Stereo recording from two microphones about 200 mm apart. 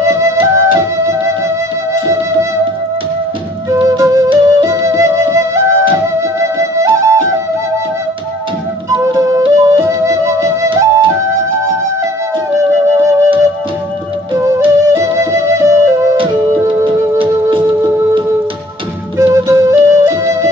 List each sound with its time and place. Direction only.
0.0 s flute: 15° right (ahead or behind)
3.7 s flute: 15° right (ahead or behind)
8.9 s flute: 15° right (ahead or behind)
12.5 s music: 15° right (ahead or behind)
14.3 s music: 20° right (ahead or behind)
16.8 s music: 25° right (ahead or behind)
19.1 s music: 15° right (ahead or behind)